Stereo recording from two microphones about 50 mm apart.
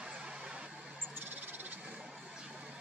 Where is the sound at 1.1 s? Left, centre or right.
Right.